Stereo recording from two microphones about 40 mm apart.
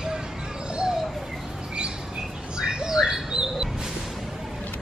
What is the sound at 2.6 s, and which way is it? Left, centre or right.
Bird, centre.